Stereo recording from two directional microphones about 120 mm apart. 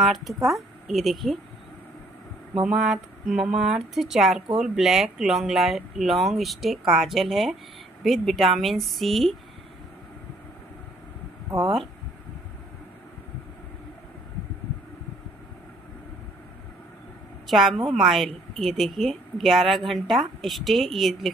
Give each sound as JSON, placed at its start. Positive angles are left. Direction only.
{"t": 0.0, "sound": "a woman's voice", "side_deg": 0}
{"t": 2.6, "sound": "a woman's voice", "side_deg": -5}
{"t": 17.5, "sound": "a woman's voice", "side_deg": 0}